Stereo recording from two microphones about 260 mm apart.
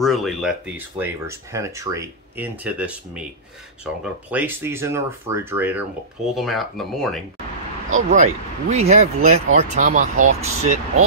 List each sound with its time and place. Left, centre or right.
0.0 s speech: centre
7.9 s speech: right